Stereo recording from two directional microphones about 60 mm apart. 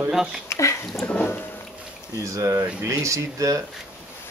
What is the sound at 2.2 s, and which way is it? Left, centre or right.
Speech, right.